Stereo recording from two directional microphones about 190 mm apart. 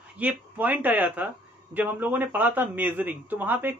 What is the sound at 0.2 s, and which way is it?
Speech, 10° right (ahead or behind).